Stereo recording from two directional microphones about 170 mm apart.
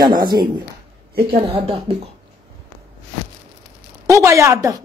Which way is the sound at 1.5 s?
35° right (ahead or behind).